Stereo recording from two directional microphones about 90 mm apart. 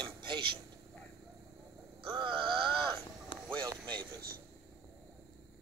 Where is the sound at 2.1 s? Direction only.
65° right (ahead or behind).